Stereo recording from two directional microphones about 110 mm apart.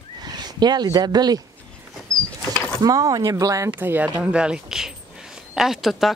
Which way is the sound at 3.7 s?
15° right (ahead or behind).